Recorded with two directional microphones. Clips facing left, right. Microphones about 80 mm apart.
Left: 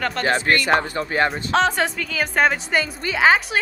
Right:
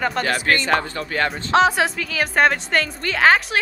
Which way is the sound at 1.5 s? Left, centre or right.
Centre.